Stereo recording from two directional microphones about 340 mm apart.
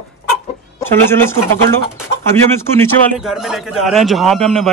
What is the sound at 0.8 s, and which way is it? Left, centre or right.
Speech, centre.